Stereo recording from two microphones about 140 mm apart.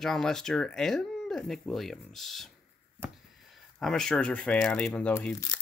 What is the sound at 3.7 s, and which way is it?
Speech, 5° left (ahead or behind).